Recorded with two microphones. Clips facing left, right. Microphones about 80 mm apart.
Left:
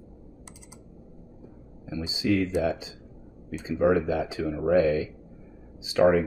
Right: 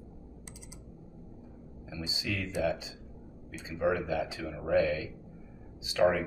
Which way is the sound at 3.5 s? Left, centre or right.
Left.